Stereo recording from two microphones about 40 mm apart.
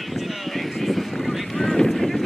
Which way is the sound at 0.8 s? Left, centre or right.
Centre.